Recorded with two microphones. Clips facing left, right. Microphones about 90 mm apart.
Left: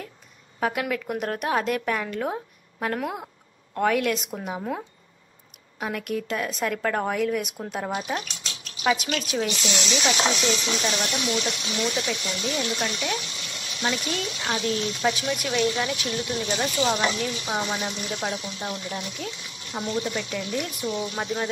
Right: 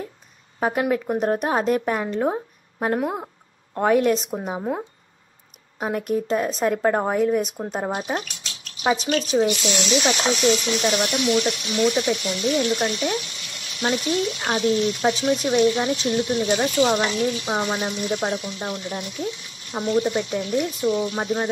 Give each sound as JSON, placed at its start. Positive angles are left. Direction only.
{"t": 0.6, "sound": "speech", "side_deg": -30}
{"t": 4.6, "sound": "speech", "side_deg": -20}
{"t": 5.8, "sound": "speech", "side_deg": -35}
{"t": 14.4, "sound": "speech", "side_deg": -35}